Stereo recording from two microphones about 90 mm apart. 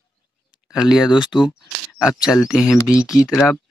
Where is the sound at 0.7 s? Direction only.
5° right (ahead or behind).